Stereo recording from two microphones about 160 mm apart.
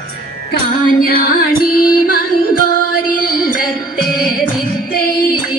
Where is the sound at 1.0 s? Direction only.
65° left (ahead or behind).